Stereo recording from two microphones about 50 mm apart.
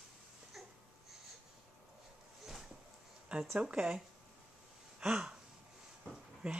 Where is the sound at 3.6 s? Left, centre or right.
Right.